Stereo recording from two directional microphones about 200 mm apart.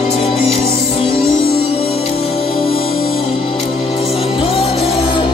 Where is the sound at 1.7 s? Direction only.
30° left (ahead or behind).